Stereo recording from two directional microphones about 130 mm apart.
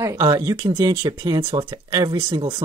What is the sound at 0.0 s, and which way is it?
Speech, 30° right (ahead or behind).